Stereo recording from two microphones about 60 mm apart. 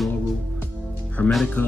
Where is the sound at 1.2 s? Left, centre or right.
Left.